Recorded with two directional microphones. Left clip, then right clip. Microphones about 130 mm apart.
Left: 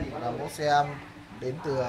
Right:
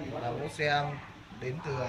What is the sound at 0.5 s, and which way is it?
Speech, 15° right (ahead or behind).